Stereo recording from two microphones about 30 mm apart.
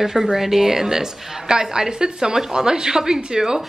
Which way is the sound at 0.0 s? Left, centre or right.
Centre.